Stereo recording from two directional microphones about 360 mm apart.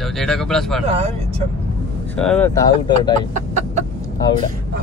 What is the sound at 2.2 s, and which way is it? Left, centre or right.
Speech, centre.